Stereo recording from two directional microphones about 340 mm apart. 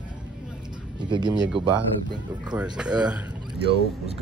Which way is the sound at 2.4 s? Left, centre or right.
Centre.